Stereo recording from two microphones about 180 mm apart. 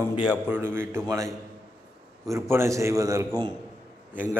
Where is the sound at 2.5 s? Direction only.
15° right (ahead or behind).